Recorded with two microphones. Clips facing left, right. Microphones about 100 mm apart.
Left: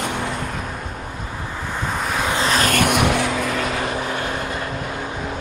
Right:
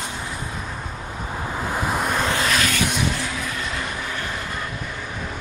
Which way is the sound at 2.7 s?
55° left (ahead or behind).